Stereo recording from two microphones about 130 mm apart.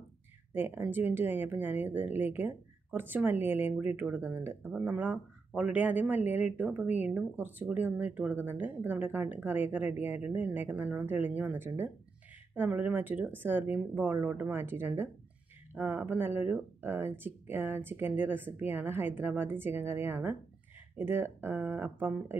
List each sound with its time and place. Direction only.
0.5 s speech: 15° right (ahead or behind)